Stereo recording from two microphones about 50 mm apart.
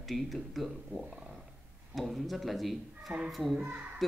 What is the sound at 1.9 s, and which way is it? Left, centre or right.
Speech, centre.